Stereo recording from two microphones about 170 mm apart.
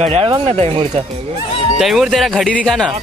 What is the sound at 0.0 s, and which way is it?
Speech, 35° right (ahead or behind).